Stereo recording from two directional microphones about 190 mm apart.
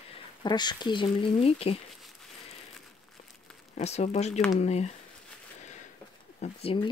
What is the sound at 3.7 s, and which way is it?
Speech, 35° left (ahead or behind).